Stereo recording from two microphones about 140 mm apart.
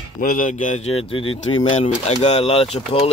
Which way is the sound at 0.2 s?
75° left (ahead or behind).